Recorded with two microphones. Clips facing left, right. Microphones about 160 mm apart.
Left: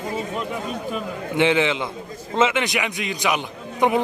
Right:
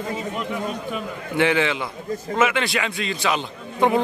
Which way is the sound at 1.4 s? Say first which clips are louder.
Left 1 dB; 20° left (ahead or behind).